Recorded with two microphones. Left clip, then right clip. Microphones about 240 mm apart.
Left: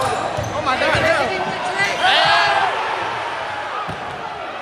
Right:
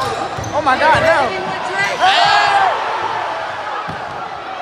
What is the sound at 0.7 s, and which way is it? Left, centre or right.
Basketball bounce, right.